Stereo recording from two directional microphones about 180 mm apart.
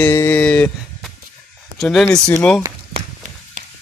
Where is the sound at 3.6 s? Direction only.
45° right (ahead or behind).